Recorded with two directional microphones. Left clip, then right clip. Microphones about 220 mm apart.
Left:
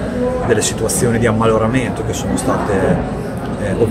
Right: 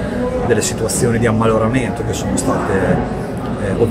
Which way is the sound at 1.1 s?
5° left (ahead or behind).